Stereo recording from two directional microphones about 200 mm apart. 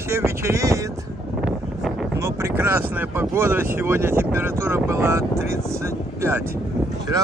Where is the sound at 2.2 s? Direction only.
10° right (ahead or behind).